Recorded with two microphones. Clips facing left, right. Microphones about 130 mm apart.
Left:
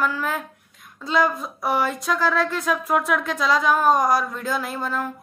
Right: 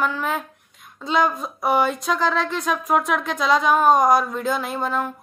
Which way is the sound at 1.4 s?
25° right (ahead or behind).